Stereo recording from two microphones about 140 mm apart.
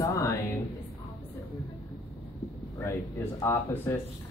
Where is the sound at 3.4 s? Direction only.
15° left (ahead or behind).